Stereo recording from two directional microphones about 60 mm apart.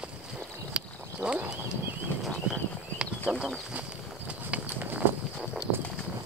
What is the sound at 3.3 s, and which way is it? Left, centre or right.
Chicken, centre.